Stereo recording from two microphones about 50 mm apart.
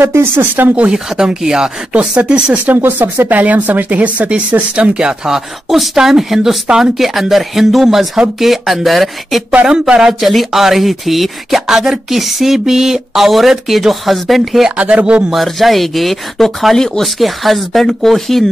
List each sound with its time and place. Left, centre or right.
0.0 s speech: right
0.9 s speech: centre
3.0 s speech: right; by 9.4 s centre
9.7 s speech: centre
10.2 s speech: centre
14.8 s speech: right
15.3 s speech: centre
17.2 s speech: centre